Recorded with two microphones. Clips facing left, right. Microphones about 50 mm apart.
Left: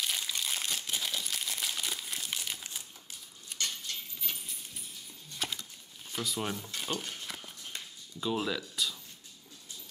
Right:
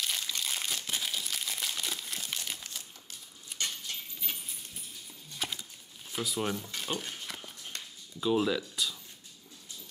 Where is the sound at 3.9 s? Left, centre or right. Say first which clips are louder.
Even; right.